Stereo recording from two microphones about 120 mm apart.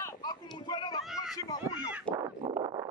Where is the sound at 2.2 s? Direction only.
35° right (ahead or behind).